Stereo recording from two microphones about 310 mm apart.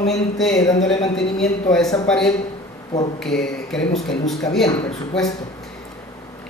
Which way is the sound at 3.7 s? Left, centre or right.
Centre.